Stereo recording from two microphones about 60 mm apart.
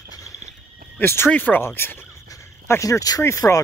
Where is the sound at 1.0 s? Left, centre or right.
Left.